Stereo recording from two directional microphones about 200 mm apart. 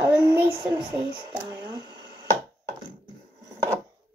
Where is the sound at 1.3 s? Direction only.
20° right (ahead or behind).